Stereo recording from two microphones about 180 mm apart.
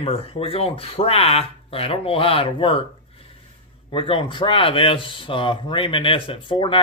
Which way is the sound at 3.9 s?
30° left (ahead or behind).